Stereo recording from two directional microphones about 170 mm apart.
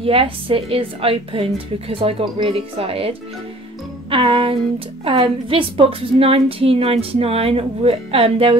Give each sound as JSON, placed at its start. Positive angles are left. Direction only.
{"t": 0.0, "sound": "a woman's voice", "side_deg": -35}